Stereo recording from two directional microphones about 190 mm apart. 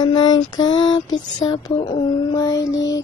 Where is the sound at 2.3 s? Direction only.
20° left (ahead or behind).